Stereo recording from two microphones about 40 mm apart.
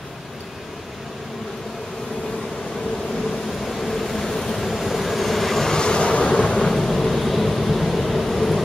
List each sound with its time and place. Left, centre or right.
3.3 s vehicle: centre
5.8 s vehicle: left
6.6 s thunder: centre